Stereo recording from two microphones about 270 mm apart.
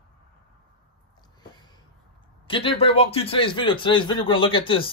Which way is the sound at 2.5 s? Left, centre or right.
Centre.